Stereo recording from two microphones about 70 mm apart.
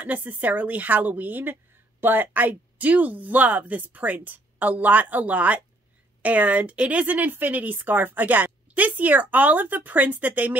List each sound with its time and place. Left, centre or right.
0.0 s speech: right